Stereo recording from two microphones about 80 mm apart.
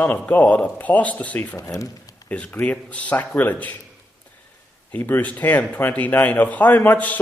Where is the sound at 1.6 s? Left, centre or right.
Left.